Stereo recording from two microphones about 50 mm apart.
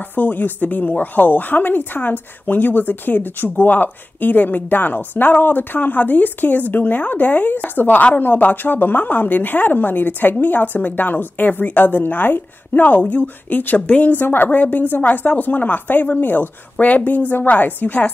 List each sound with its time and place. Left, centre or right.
0.1 s a woman's voice: left